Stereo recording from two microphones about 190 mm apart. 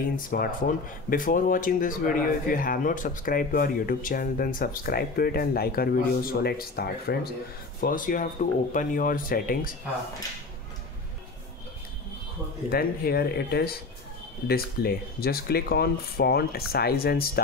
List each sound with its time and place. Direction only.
0.2 s speech: 50° left (ahead or behind)
12.6 s speech: 55° left (ahead or behind)